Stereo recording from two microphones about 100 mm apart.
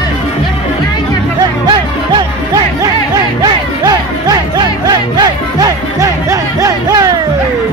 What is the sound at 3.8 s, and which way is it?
Music, 40° right (ahead or behind).